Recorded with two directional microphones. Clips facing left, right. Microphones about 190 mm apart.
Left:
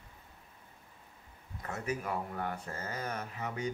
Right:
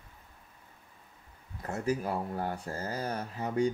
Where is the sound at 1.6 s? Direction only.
35° right (ahead or behind).